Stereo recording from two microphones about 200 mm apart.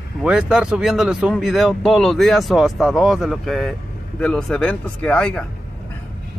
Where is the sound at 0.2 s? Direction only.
5° right (ahead or behind).